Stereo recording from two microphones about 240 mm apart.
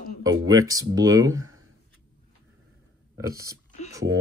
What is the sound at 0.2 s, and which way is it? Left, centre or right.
Speech, centre.